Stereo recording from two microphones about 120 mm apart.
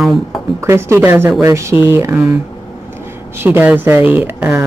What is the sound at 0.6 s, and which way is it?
Speech, 20° right (ahead or behind).